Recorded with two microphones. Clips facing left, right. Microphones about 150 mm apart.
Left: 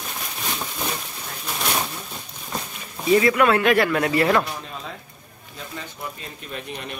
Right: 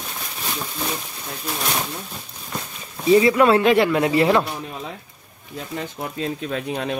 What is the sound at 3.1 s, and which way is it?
Speech, 25° right (ahead or behind).